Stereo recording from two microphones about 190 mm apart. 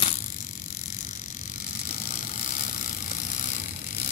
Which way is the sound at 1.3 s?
45° left (ahead or behind).